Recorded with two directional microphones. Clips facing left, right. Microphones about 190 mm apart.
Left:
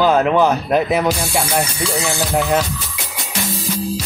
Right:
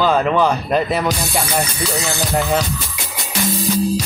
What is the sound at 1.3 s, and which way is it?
Music, centre (ahead or behind).